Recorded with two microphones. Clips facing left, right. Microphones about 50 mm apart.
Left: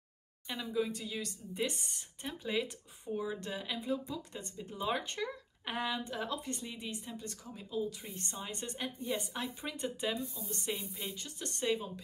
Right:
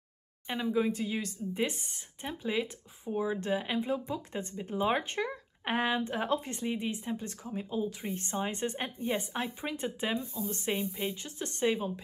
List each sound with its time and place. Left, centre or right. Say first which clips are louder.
0.5 s speech: right 5 dB; right